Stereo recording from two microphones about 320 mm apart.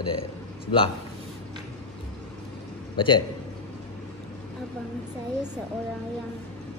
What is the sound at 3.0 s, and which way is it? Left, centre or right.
Speech, centre.